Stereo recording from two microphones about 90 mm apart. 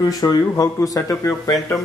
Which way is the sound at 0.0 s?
45° left (ahead or behind).